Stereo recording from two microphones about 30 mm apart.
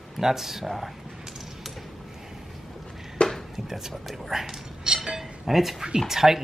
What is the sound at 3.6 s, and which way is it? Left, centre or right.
Speech, centre.